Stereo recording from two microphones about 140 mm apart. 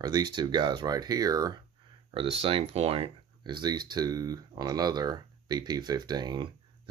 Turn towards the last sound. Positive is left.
turn(degrees=-30)  # may be behind; listen again after turning